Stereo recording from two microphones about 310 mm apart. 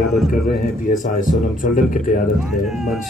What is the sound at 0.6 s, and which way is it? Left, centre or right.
A man's voice, left.